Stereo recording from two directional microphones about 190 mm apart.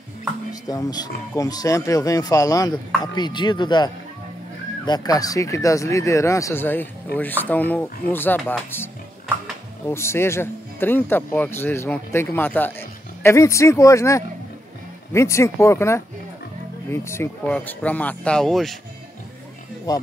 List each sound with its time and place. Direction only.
0.5 s speech: 20° left (ahead or behind); by 18.8 s centre (ahead or behind)
19.9 s speech: 20° left (ahead or behind)